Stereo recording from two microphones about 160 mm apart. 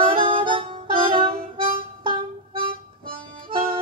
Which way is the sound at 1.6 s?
35° right (ahead or behind).